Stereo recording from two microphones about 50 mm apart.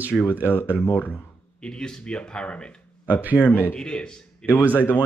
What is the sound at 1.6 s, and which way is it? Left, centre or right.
A man's voice, centre.